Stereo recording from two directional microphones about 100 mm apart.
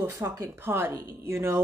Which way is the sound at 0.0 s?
25° right (ahead or behind).